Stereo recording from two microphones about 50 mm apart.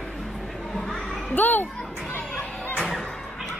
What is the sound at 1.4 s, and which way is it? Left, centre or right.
Speech, left.